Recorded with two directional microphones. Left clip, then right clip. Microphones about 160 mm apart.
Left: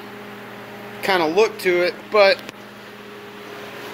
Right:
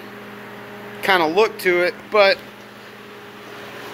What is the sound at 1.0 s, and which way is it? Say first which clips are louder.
Speech: right 1 dB; centre (ahead or behind).